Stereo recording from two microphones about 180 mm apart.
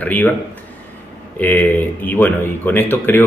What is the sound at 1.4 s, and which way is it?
Speech, 10° left (ahead or behind).